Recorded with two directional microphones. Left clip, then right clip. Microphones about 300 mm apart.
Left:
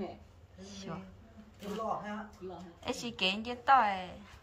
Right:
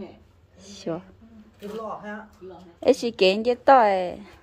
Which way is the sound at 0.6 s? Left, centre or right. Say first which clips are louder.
Right 13 dB; centre.